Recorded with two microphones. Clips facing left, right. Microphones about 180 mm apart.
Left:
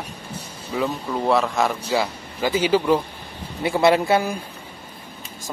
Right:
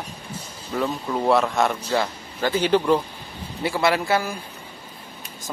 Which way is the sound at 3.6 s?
20° left (ahead or behind).